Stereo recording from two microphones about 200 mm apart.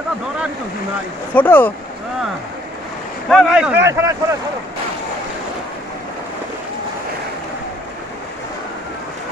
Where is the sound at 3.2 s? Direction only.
Centre (ahead or behind).